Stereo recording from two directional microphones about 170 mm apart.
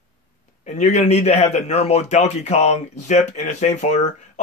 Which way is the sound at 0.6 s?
45° left (ahead or behind).